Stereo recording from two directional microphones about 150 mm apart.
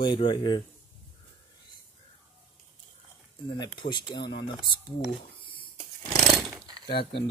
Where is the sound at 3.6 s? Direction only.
30° left (ahead or behind).